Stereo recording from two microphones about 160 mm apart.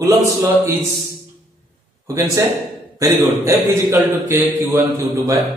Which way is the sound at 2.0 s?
20° right (ahead or behind).